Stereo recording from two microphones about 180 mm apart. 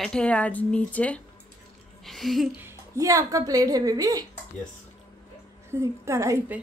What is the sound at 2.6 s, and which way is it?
A woman's voice, 15° right (ahead or behind).